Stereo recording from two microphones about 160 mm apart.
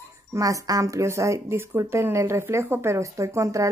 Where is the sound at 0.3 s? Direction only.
20° right (ahead or behind).